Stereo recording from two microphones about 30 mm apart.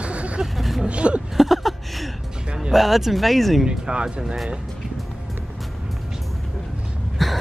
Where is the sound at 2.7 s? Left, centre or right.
Centre.